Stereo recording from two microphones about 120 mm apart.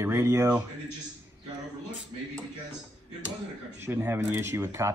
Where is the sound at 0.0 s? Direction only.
20° right (ahead or behind).